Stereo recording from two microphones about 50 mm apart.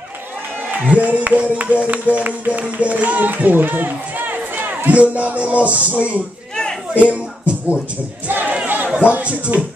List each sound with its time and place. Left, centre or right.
0.7 s speech: right
4.9 s music: right
6.9 s a sound: right
8.3 s battle cry: right
8.6 s chatter: right
8.9 s music: right